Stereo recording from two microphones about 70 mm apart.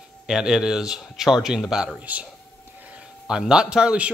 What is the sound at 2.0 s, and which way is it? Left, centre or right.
Speech, right.